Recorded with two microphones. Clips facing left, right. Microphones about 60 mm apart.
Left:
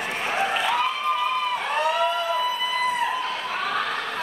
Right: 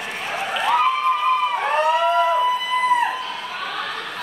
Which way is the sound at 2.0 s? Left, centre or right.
Right.